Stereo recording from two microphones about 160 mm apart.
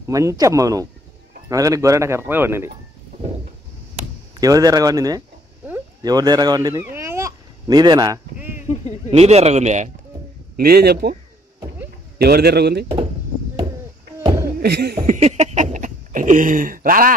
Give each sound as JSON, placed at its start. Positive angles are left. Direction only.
{"t": 0.0, "sound": "speech", "side_deg": -20}
{"t": 4.4, "sound": "speech", "side_deg": -20}
{"t": 8.4, "sound": "a sound", "side_deg": -10}
{"t": 9.1, "sound": "speech", "side_deg": -40}
{"t": 10.5, "sound": "speech", "side_deg": -75}
{"t": 12.2, "sound": "a man's voice", "side_deg": -75}
{"t": 12.8, "sound": "speech", "side_deg": -30}
{"t": 14.6, "sound": "speech", "side_deg": -85}
{"t": 15.0, "sound": "a sound", "side_deg": -40}